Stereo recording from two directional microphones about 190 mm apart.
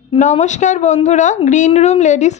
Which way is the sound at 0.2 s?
40° left (ahead or behind).